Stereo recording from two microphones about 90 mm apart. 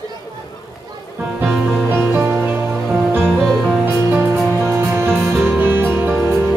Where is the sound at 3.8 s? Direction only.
20° right (ahead or behind).